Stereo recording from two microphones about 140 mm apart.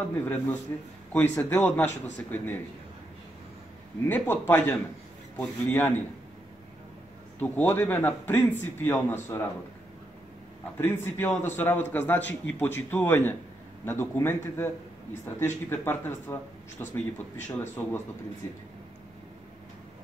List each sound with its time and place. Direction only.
0.2 s a man's voice: 10° left (ahead or behind)
4.1 s a man's voice: 15° left (ahead or behind)
7.3 s a man's voice: 10° left (ahead or behind)
10.8 s a man's voice: 15° left (ahead or behind)